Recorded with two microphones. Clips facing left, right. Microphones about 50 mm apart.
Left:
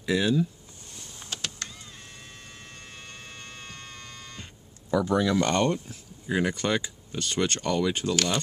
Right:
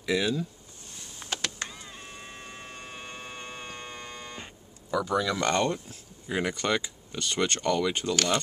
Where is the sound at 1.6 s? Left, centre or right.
Centre.